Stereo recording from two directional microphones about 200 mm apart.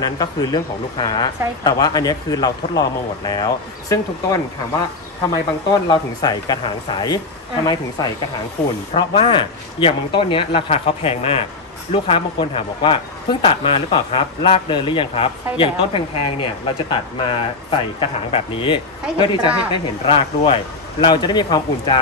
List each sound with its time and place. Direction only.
0.0 s speech: 20° left (ahead or behind)
8.9 s speech: 25° left (ahead or behind)